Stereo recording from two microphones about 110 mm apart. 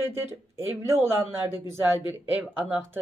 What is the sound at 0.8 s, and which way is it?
Speech, 25° right (ahead or behind).